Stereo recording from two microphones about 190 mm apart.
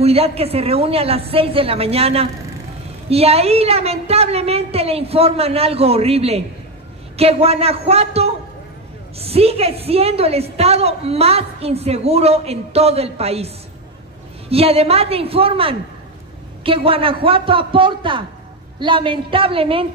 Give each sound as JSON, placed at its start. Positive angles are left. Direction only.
{"t": 0.0, "sound": "a woman's voice", "side_deg": -30}
{"t": 14.5, "sound": "a woman's voice", "side_deg": -30}